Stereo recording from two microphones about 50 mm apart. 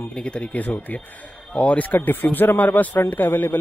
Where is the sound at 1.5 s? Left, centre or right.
Left.